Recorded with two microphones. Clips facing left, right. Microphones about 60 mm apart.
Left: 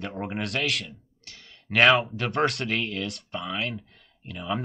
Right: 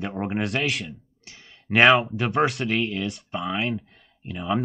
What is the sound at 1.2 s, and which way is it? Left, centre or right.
Clicking, centre.